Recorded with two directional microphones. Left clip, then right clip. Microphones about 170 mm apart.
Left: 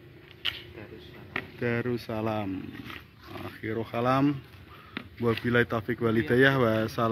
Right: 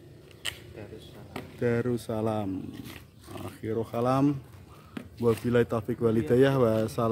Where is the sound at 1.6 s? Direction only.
25° right (ahead or behind).